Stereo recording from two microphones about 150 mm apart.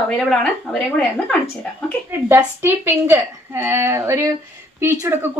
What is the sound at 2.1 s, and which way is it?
A woman's voice, 15° right (ahead or behind).